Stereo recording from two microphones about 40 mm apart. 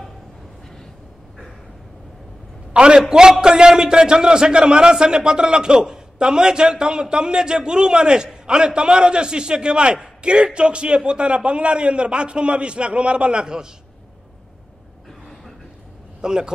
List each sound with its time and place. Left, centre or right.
2.7 s a man's voice: right
16.2 s a man's voice: centre